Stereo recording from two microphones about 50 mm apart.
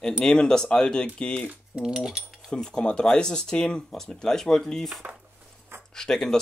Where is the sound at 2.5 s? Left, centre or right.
Centre.